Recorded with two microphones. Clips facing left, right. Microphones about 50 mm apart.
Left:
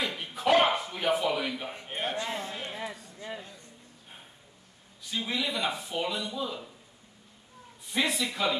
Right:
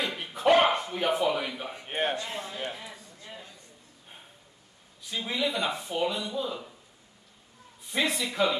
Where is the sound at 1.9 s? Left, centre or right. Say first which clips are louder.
Right 5 dB; right.